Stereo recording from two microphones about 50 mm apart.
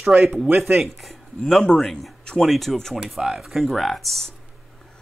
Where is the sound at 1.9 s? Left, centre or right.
Centre.